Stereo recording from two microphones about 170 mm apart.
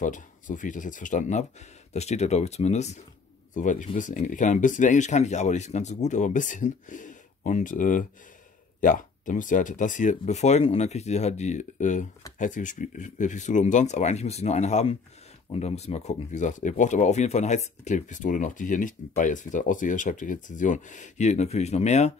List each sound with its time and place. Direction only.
0.0 s speech: 50° left (ahead or behind)